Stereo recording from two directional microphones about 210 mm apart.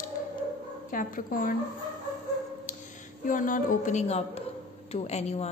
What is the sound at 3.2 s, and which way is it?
A woman's voice, 40° left (ahead or behind).